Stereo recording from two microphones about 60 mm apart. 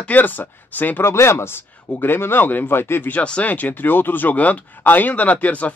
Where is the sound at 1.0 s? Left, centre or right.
Left.